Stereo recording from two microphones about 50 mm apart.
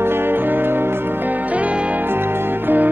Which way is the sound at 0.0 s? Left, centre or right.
Right.